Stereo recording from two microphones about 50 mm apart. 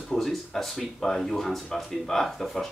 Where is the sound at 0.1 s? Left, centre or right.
Centre.